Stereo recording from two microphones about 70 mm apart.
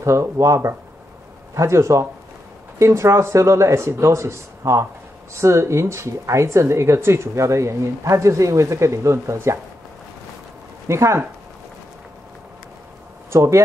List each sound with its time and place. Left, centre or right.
0.0 s speech: right
10.9 s speech: right
13.3 s speech: right